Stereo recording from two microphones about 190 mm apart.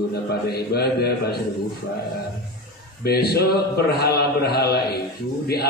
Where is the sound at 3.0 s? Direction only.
55° left (ahead or behind).